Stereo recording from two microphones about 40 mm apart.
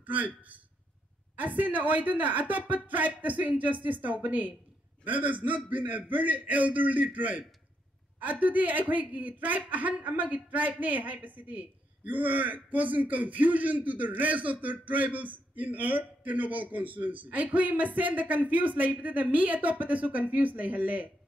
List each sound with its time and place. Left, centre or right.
0.0 s a man's voice: right
1.6 s a man's voice: right